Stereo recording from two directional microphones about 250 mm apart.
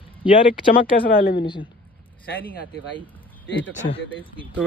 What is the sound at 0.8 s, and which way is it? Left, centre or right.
Speech, left.